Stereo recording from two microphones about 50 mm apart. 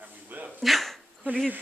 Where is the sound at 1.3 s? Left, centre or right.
Right.